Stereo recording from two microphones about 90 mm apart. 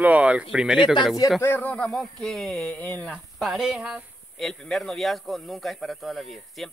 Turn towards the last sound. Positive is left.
turn(degrees=0)  # may be behind; listen again after turning